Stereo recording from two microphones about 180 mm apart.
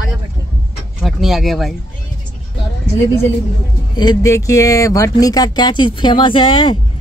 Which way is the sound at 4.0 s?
20° left (ahead or behind).